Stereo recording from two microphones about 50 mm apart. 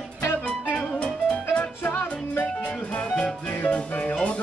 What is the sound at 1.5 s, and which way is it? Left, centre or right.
Music, left.